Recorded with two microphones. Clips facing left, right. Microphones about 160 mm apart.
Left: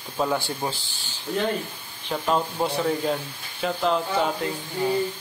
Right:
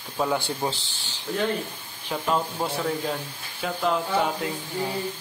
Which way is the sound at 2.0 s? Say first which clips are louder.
Left 2 dB; 5° left (ahead or behind).